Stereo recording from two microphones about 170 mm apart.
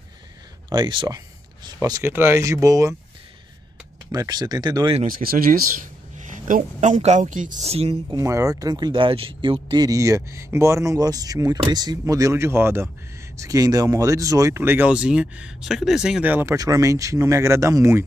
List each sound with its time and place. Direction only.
0.7 s speech: 25° right (ahead or behind)
4.1 s speech: 25° right (ahead or behind)
5.0 s speech: 60° right (ahead or behind)
7.6 s speech: 35° right (ahead or behind)
8.2 s speech: 20° right (ahead or behind)